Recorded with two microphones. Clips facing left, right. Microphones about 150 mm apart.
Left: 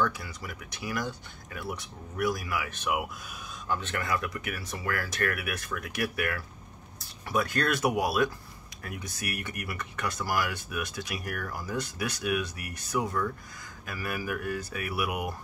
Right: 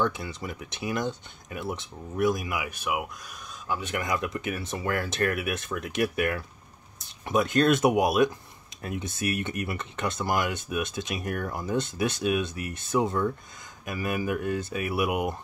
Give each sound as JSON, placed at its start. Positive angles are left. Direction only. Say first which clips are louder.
{"t": 0.0, "sound": "speech", "louder": "right 2 dB", "side_deg": -25}
{"t": 2.8, "sound": "speech", "louder": "even", "side_deg": 0}